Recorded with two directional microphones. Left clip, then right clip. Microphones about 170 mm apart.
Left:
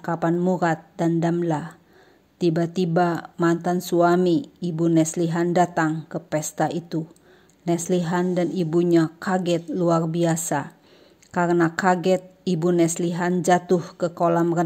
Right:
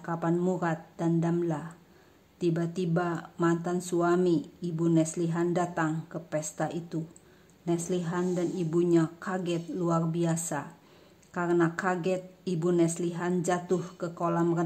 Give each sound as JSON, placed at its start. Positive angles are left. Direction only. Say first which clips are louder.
{"t": 0.0, "sound": "speech", "louder": "left 7 dB", "side_deg": 30}